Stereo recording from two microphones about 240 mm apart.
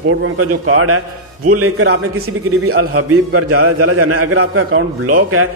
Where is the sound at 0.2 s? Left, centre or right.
Right.